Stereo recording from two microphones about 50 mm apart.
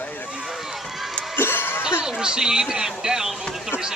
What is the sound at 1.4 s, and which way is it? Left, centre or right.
Music, left.